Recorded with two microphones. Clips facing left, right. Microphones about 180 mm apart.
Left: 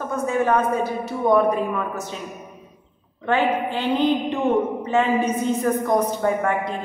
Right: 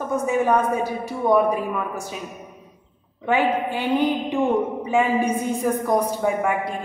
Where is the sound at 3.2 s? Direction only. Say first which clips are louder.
Even; 10° right (ahead or behind).